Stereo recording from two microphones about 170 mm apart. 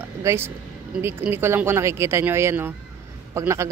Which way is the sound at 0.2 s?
15° right (ahead or behind).